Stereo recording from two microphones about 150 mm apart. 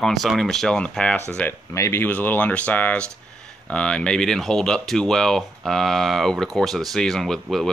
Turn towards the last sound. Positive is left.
turn(degrees=0)  # may be behind; listen again after turning